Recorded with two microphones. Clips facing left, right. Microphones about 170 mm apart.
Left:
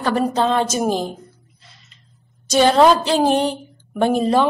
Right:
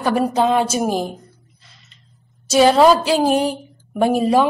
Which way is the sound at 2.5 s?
5° right (ahead or behind).